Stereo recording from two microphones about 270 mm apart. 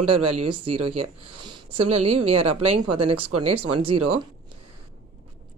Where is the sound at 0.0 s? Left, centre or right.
Right.